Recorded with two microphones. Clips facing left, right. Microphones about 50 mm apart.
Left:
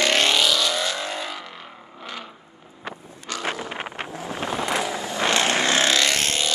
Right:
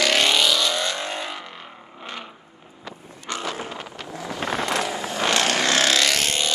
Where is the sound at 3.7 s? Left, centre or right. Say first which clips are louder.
Left 3 dB; left.